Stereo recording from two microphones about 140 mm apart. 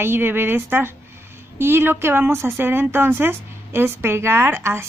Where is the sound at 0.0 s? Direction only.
15° right (ahead or behind).